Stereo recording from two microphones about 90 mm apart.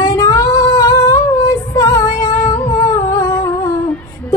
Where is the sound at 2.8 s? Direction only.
40° left (ahead or behind).